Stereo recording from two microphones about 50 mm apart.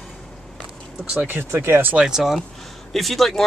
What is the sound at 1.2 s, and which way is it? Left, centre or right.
Speech, right.